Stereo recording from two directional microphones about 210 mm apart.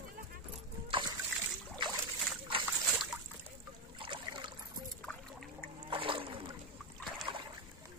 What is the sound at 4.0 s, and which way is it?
Boat, 20° right (ahead or behind).